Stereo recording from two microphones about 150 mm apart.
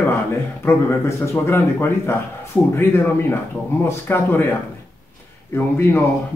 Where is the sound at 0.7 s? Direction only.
15° left (ahead or behind).